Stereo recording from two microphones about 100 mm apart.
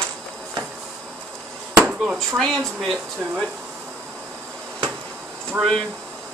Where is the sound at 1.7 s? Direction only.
10° right (ahead or behind).